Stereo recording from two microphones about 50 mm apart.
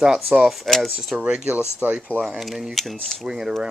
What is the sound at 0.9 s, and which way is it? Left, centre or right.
Speech, centre.